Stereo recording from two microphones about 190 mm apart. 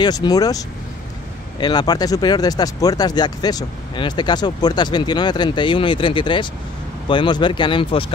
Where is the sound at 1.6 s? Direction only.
20° left (ahead or behind).